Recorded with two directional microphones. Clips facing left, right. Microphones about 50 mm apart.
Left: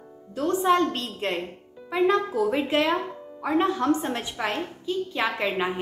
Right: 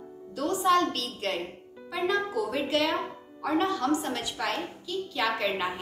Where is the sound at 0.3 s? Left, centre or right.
Left.